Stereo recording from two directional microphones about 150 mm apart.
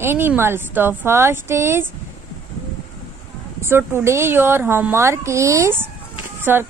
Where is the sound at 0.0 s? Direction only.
15° right (ahead or behind).